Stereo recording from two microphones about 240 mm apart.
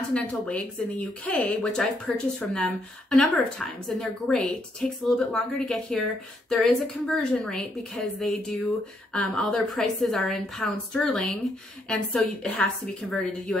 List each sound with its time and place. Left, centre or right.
0.1 s speech: centre